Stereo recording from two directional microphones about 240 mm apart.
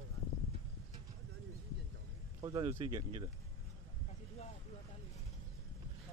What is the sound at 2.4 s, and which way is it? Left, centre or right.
Speech, centre.